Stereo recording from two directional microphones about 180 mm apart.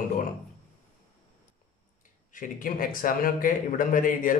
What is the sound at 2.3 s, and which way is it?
Speech, 50° left (ahead or behind).